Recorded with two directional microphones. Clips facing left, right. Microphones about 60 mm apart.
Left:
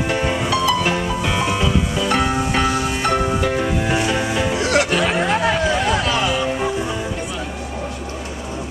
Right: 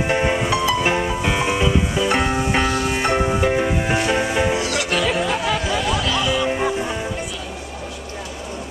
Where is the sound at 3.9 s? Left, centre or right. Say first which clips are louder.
Even; centre.